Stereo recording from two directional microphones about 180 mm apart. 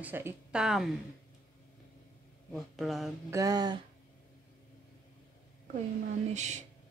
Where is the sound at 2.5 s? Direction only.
Centre (ahead or behind).